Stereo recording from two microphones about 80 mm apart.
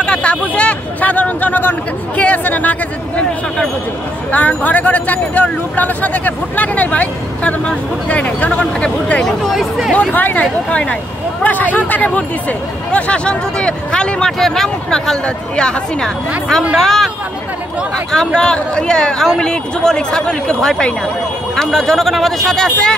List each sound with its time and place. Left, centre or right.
0.0 s speech: centre
9.9 s speech: centre
18.1 s speech: centre